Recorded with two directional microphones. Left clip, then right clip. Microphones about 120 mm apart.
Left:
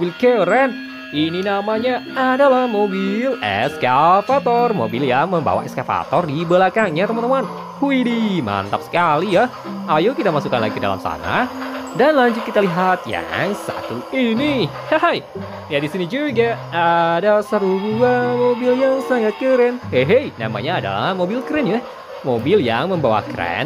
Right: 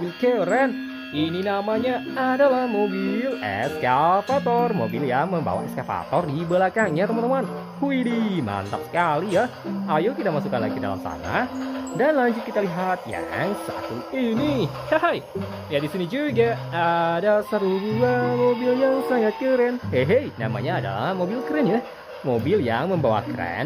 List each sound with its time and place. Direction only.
0.2 s speech: 10° left (ahead or behind)
4.9 s speech: 15° left (ahead or behind)
9.3 s speech: centre (ahead or behind)
9.9 s speech: 10° left (ahead or behind)
11.1 s speech: 25° left (ahead or behind); by 23.6 s 10° left (ahead or behind)